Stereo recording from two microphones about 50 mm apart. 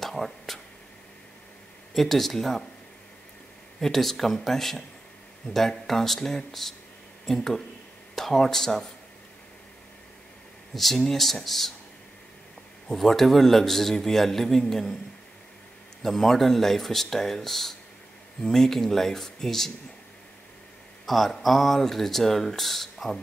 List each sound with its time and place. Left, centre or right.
0.0 s a sound: centre
2.0 s a man's voice: centre
3.8 s a man's voice: centre
10.7 s a man's voice: centre
12.8 s a man's voice: centre
16.0 s a man's voice: centre
21.0 s a man's voice: centre